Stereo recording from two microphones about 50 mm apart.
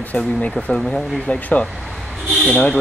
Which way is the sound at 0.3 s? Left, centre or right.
Left.